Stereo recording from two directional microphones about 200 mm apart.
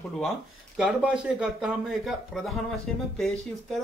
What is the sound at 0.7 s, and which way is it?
Speech, 5° right (ahead or behind).